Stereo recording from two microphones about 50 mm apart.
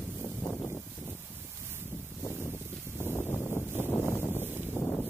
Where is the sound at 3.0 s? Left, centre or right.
Left.